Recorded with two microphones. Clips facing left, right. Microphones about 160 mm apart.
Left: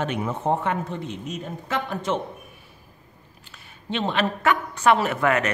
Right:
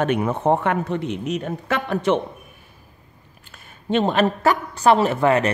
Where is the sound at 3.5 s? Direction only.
45° right (ahead or behind); by 5.5 s 30° right (ahead or behind).